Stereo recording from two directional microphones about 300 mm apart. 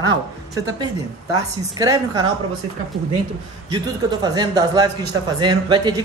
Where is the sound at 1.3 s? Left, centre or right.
Centre.